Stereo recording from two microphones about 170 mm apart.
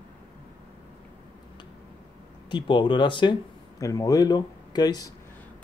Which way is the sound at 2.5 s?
30° left (ahead or behind).